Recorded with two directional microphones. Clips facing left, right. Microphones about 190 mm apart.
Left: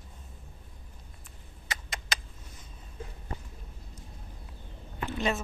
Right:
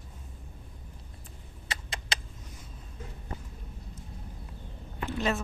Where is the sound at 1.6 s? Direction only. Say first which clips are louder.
Even; 30° right (ahead or behind).